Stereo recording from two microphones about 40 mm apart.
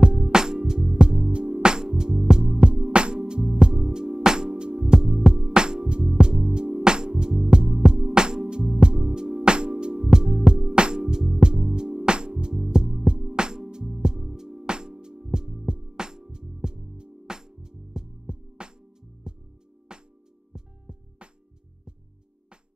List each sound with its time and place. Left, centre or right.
0.0 s music: centre
2.7 s music: right; by 5.3 s centre
5.3 s music: right
9.9 s music: centre
10.5 s music: right